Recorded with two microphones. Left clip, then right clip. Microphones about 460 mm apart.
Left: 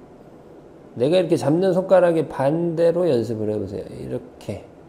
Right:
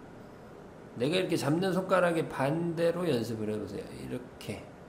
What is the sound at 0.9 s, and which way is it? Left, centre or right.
Speech, left.